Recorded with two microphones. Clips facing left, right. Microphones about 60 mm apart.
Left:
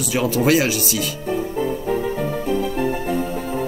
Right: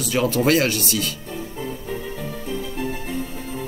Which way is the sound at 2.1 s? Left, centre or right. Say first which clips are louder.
Left 8 dB; left.